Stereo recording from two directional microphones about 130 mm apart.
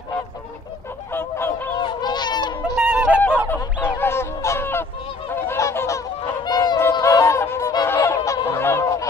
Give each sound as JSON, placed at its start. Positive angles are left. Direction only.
{"t": 1.8, "sound": "honk", "side_deg": 35}
{"t": 2.6, "sound": "yodeling", "side_deg": -10}
{"t": 3.4, "sound": "fowl", "side_deg": 15}
{"t": 5.3, "sound": "goose", "side_deg": 20}
{"t": 6.9, "sound": "honk", "side_deg": 25}
{"t": 8.5, "sound": "goose", "side_deg": 20}